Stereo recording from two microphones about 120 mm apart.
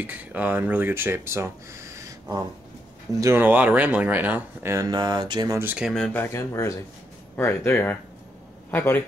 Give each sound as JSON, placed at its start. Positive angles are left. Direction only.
{"t": 0.0, "sound": "speech", "side_deg": -15}
{"t": 4.7, "sound": "mantra", "side_deg": -30}
{"t": 5.6, "sound": "speech", "side_deg": -15}
{"t": 5.9, "sound": "speech", "side_deg": 5}
{"t": 6.1, "sound": "speech", "side_deg": 20}